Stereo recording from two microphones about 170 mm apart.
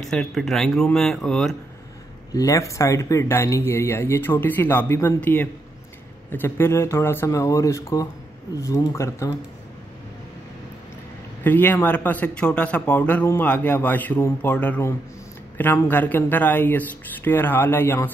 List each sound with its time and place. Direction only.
0.0 s speech: centre (ahead or behind)
2.3 s a man's voice: 20° left (ahead or behind)
11.4 s a man's voice: 10° left (ahead or behind)